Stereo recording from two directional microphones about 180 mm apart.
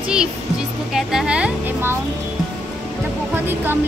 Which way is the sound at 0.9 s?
5° right (ahead or behind).